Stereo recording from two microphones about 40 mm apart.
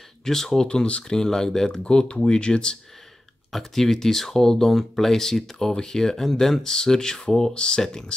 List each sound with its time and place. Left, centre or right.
0.2 s speech: centre
0.7 s speech: left
1.0 s speech: centre
3.5 s speech: centre